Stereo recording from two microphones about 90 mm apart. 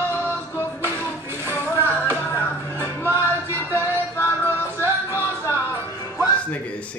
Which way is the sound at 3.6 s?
25° right (ahead or behind).